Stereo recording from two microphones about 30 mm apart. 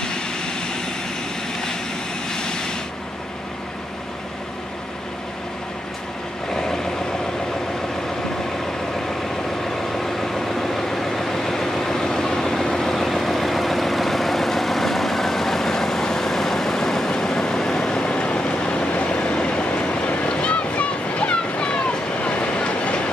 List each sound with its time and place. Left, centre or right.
9.9 s vehicle: centre
18.2 s vehicle: left